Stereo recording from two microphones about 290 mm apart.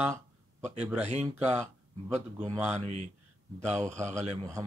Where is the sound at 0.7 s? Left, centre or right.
Centre.